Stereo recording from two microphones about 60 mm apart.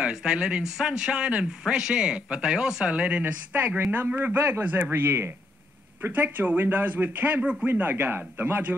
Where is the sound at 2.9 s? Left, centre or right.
Right.